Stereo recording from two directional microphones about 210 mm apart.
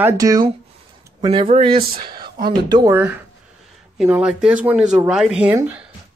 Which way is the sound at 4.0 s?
5° right (ahead or behind).